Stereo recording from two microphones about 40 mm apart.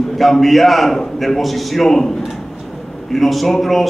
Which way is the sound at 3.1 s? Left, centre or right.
Centre.